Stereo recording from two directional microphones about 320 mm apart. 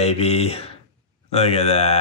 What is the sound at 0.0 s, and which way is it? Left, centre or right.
Speech, centre.